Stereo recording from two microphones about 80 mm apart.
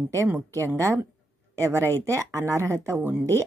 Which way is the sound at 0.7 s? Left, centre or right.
Right.